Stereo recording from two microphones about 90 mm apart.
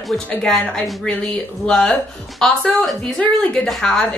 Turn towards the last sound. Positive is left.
turn(degrees=5)  # may be behind; listen again after turning